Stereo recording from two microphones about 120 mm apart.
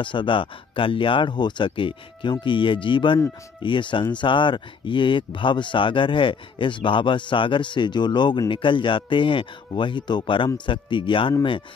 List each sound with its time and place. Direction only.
0.0 s speech: 45° left (ahead or behind)